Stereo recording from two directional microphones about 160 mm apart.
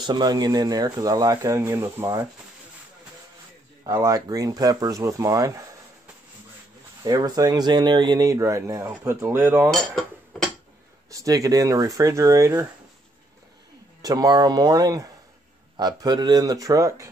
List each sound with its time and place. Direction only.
0.0 s speech: 25° right (ahead or behind)
3.8 s speech: 20° right (ahead or behind)
7.0 s speech: 20° right (ahead or behind)
9.7 s a sound: centre (ahead or behind)
11.1 s speech: 20° right (ahead or behind)
14.0 s speech: 25° right (ahead or behind)